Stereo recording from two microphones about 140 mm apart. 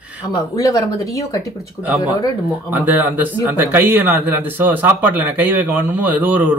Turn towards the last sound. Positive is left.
turn(degrees=-10)  # may be behind; listen again after turning